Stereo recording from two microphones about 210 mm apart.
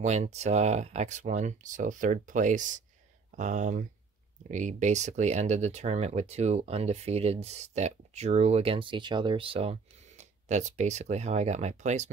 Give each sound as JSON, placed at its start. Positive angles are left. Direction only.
{"t": 0.0, "sound": "speech", "side_deg": -35}